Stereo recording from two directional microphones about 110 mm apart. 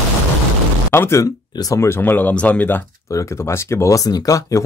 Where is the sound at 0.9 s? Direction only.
25° left (ahead or behind).